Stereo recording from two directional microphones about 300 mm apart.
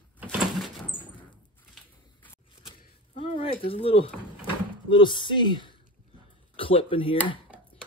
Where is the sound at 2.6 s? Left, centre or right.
Centre.